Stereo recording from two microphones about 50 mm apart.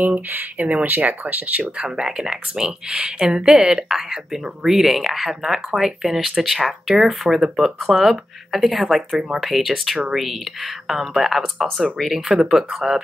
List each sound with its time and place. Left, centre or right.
0.0 s speech: right
1.9 s speech: centre
2.9 s speech: right
3.3 s speech: centre